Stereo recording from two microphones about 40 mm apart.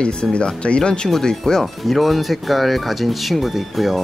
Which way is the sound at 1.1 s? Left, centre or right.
Centre.